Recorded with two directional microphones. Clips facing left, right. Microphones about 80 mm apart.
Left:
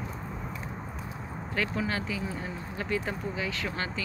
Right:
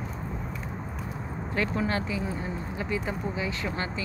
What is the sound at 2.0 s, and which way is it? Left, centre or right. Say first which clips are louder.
Speech: right 3 dB; centre.